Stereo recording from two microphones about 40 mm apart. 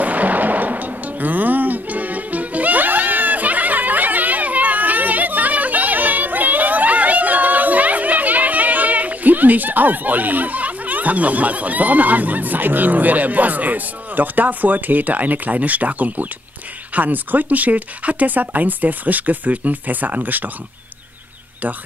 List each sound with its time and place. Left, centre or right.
0.0 s music: right
16.9 s speech: right